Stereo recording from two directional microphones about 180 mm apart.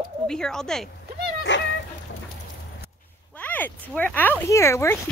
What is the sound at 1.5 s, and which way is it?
Speech, 90° left.